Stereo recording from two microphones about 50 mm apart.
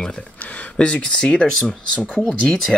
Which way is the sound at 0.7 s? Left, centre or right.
Centre.